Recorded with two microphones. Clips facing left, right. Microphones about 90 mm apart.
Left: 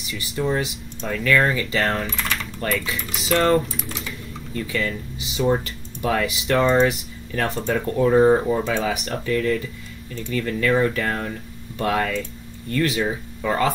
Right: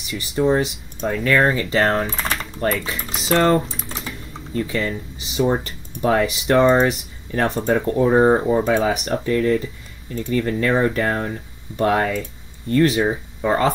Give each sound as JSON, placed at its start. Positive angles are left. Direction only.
{"t": 0.1, "sound": "speech", "side_deg": -35}
{"t": 8.6, "sound": "speech", "side_deg": -40}
{"t": 9.0, "sound": "speech", "side_deg": -30}